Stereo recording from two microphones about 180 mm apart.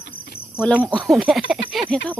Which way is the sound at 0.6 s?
10° left (ahead or behind).